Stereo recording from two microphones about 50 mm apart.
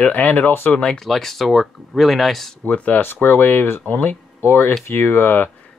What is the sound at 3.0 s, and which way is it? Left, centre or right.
Speech, left.